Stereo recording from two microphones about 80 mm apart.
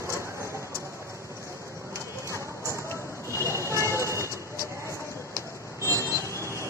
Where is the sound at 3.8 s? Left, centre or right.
Left.